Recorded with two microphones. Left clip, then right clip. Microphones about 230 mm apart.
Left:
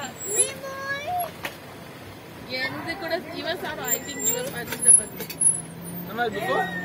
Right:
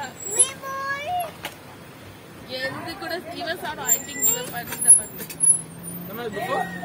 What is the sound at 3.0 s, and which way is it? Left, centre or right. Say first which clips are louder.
Speech: left 1 dB; right.